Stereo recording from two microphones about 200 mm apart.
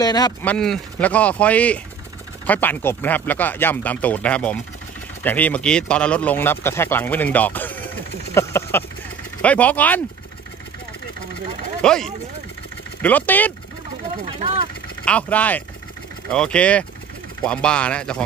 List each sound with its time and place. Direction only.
0.0 s speech: 20° left (ahead or behind)
0.4 s speech: 5° left (ahead or behind)
11.8 s speech: 5° left (ahead or behind)
14.4 s speech: 30° right (ahead or behind)
15.0 s speech: 5° left (ahead or behind)